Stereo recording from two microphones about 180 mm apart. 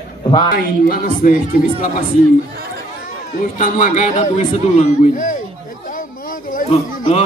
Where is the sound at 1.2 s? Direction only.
45° left (ahead or behind).